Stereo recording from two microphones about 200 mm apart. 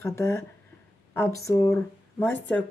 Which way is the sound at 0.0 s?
15° left (ahead or behind).